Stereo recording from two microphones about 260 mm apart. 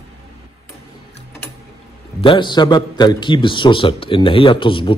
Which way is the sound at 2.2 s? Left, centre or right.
Centre.